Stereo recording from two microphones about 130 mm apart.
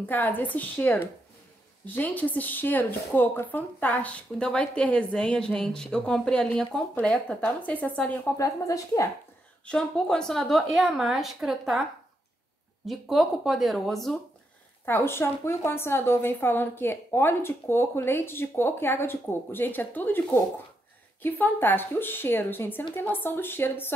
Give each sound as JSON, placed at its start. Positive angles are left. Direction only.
{"t": 0.0, "sound": "a woman's voice", "side_deg": 15}
{"t": 8.4, "sound": "speech", "side_deg": 25}
{"t": 9.7, "sound": "a woman's voice", "side_deg": 5}
{"t": 12.8, "sound": "a woman's voice", "side_deg": 0}
{"t": 14.9, "sound": "a woman's voice", "side_deg": 20}